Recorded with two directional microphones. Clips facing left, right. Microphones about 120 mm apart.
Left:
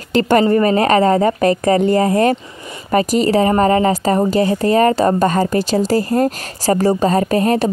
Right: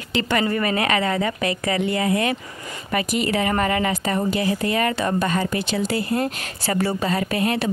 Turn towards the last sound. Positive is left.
turn(degrees=40)  # may be behind; listen again after turning